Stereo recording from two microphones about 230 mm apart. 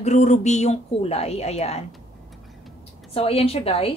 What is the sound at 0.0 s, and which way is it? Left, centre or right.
Speech, left.